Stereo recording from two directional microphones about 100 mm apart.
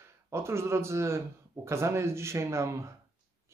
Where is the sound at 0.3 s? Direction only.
25° right (ahead or behind).